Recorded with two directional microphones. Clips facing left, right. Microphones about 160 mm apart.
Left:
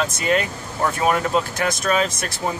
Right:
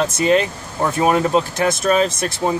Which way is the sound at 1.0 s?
25° right (ahead or behind).